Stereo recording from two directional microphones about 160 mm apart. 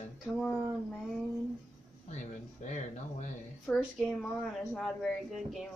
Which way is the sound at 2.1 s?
45° left (ahead or behind).